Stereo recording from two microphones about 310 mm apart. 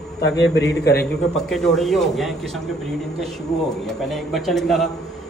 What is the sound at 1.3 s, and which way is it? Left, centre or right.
A man's voice, centre.